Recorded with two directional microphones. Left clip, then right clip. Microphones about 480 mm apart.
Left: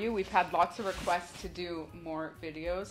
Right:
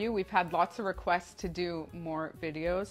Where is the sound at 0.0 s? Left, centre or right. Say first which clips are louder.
Even; right.